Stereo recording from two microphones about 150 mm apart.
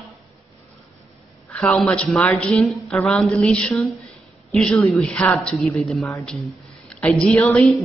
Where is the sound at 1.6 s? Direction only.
5° left (ahead or behind).